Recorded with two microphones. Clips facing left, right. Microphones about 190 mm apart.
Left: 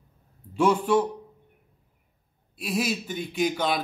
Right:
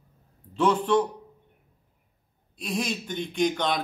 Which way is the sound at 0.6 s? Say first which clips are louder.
Left 1 dB; 10° left (ahead or behind).